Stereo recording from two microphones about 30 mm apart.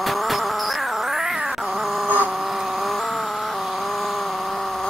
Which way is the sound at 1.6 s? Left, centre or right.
Centre.